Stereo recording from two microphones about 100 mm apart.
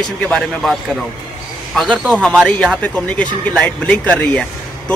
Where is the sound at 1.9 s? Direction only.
10° left (ahead or behind).